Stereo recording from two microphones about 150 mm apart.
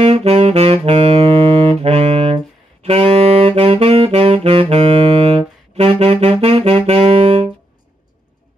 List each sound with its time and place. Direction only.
0.0 s saxophone: 40° right (ahead or behind)